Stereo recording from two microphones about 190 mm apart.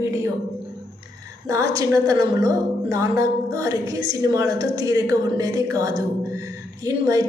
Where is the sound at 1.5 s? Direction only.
15° right (ahead or behind).